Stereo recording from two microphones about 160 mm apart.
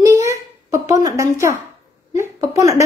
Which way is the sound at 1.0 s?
20° right (ahead or behind).